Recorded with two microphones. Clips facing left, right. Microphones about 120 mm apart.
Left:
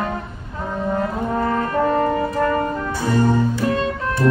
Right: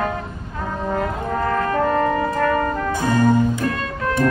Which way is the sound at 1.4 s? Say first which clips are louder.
Right 1 dB; 20° left (ahead or behind).